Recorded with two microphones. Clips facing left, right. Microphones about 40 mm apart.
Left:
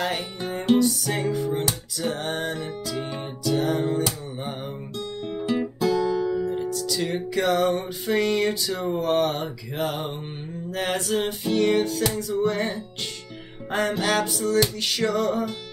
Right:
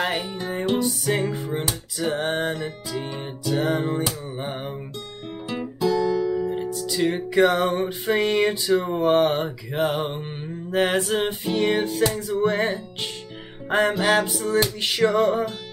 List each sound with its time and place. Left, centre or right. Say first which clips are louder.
0.7 s music: left 1 dB; right
5.8 s guitar: right 4 dB; centre
6.4 s music: even; centre
7.2 s mantra: right 2 dB; right
13.7 s music: right 4 dB; right
13.9 s mantra: right 3 dB; centre